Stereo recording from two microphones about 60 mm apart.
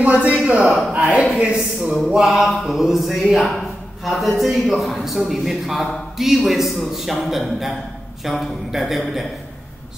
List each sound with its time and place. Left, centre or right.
0.0 s a man's voice: right
0.7 s a man's voice: centre
0.9 s a man's voice: centre
2.0 s a man's voice: centre